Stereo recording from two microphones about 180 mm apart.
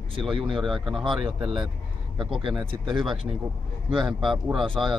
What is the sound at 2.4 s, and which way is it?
Speech, 25° right (ahead or behind).